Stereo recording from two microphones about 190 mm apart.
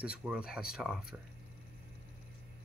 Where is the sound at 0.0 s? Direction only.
5° right (ahead or behind).